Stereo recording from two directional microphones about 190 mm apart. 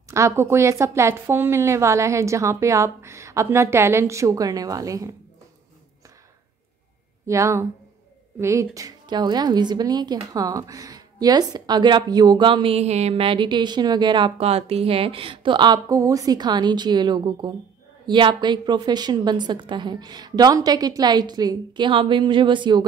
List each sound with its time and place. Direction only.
0.1 s a woman's voice: 15° right (ahead or behind)
7.2 s a woman's voice: 15° right (ahead or behind)